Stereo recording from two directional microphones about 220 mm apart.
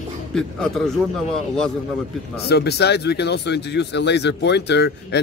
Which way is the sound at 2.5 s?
50° left (ahead or behind).